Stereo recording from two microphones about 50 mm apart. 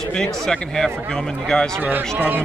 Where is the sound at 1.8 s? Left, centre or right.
Right.